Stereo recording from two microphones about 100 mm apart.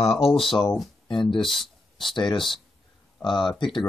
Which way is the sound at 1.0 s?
55° left (ahead or behind).